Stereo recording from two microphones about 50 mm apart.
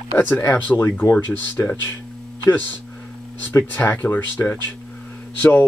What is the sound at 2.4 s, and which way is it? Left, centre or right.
Speech, left.